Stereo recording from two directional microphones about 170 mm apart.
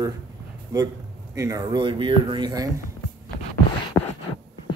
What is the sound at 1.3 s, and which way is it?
Speech, 20° right (ahead or behind).